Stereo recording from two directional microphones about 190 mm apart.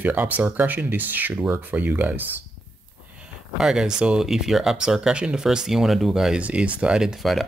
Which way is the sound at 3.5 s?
5° right (ahead or behind).